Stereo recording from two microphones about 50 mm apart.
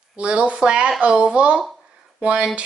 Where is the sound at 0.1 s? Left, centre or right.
Right.